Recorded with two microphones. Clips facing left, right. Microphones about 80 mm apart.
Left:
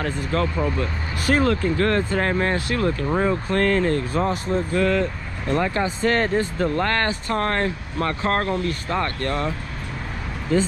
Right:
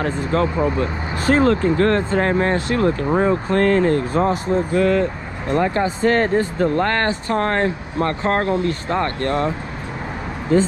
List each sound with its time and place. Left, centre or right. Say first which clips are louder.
0.0 s speech: right 4 dB; right
3.1 s speech: right 4 dB; right